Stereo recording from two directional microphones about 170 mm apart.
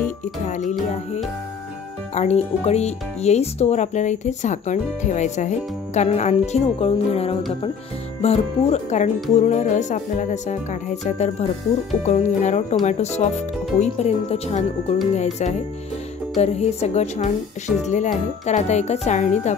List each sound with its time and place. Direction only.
0.5 s speech: 45° left (ahead or behind)